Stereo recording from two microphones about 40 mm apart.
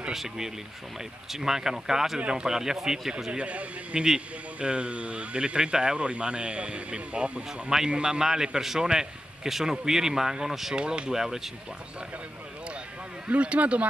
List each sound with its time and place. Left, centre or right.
0.1 s a man's voice: centre
2.1 s a man's voice: right
3.3 s speech: right
8.0 s a man's voice: centre
13.3 s speech: right